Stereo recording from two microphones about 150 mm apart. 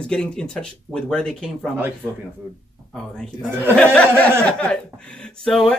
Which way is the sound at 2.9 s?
5° left (ahead or behind).